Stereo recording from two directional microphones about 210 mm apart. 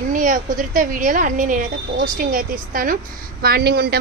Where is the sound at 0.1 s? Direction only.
40° right (ahead or behind).